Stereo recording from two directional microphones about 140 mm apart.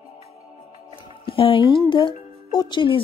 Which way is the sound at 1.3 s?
40° left (ahead or behind).